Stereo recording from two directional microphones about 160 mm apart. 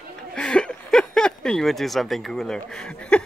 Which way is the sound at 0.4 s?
5° left (ahead or behind).